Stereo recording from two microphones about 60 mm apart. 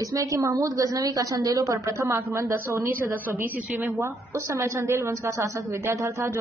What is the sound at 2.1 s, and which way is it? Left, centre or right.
Speech, right.